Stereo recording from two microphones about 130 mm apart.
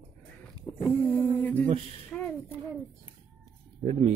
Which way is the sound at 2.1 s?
5° left (ahead or behind).